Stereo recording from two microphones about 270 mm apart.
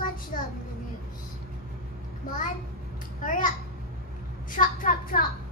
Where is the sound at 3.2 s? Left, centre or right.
Left.